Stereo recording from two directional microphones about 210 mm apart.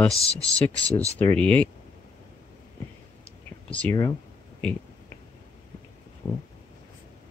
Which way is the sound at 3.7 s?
10° left (ahead or behind).